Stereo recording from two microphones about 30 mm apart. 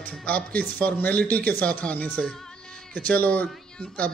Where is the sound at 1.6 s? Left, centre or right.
Left.